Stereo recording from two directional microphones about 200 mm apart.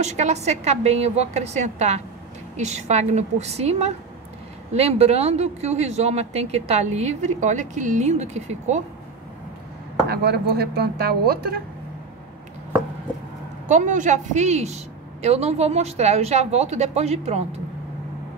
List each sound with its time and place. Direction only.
0.0 s speech: 35° right (ahead or behind)
10.0 s speech: 55° right (ahead or behind)
13.7 s speech: 40° right (ahead or behind)